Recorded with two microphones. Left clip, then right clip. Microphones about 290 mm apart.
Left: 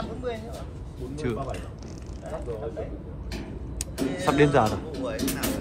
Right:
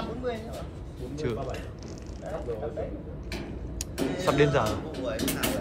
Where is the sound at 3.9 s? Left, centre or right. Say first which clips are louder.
Left 1 dB; centre.